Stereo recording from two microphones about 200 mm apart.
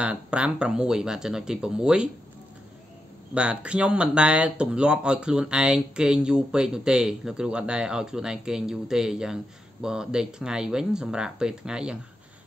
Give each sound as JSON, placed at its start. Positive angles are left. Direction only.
{"t": 0.0, "sound": "speech", "side_deg": -5}
{"t": 3.3, "sound": "speech", "side_deg": -5}